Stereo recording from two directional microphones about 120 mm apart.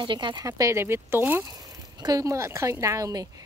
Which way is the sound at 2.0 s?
30° right (ahead or behind).